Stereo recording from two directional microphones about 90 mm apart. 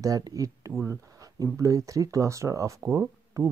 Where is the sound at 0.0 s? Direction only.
40° right (ahead or behind).